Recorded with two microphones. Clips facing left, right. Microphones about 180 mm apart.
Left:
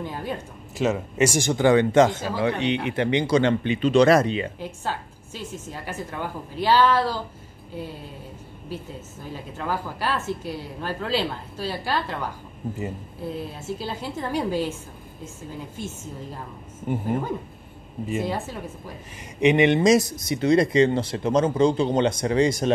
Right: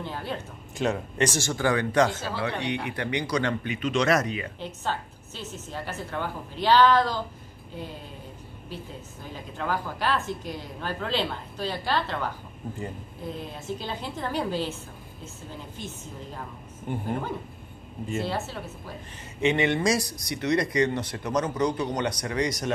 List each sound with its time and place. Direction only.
0.0 s speech: 10° left (ahead or behind); by 4.5 s 30° left (ahead or behind)
4.6 s a woman's voice: 10° left (ahead or behind)
9.3 s a woman's voice: 10° left (ahead or behind)
16.9 s a woman's voice: 5° left (ahead or behind); by 22.7 s 30° left (ahead or behind)